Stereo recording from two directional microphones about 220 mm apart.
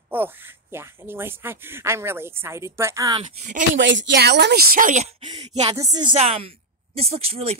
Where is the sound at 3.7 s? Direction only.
55° right (ahead or behind); by 5.0 s 35° right (ahead or behind).